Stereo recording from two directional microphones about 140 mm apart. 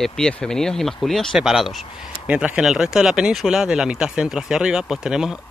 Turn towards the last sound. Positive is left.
turn(degrees=-5)  # may be behind; listen again after turning